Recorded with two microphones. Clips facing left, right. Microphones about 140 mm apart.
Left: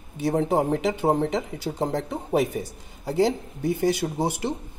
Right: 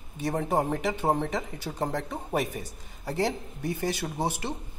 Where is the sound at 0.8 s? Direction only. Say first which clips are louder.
Left 4 dB; 10° left (ahead or behind).